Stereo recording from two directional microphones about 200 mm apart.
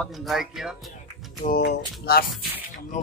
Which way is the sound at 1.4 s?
50° left (ahead or behind).